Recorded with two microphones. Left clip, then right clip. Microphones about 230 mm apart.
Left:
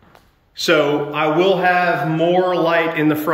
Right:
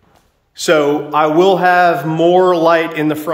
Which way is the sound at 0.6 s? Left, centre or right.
Centre.